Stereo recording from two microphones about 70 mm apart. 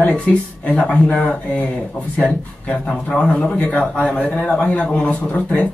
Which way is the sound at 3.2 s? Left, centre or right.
Centre.